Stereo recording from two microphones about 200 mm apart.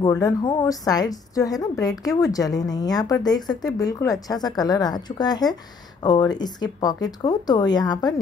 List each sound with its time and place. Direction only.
0.0 s a woman's voice: 20° left (ahead or behind)